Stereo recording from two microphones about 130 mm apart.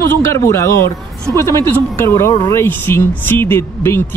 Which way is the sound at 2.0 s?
20° left (ahead or behind).